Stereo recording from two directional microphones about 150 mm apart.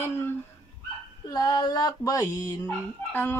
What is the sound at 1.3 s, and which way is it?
Fowl, 30° left (ahead or behind).